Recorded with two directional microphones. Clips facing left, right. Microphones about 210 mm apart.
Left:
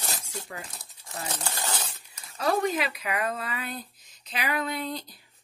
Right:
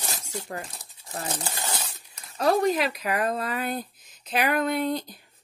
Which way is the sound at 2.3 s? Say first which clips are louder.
Right 4 dB; 45° right (ahead or behind).